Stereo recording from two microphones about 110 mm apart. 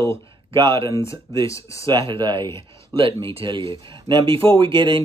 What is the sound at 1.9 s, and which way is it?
Speech, 45° right (ahead or behind).